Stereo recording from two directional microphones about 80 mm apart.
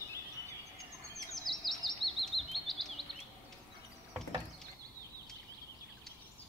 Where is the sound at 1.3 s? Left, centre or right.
Centre.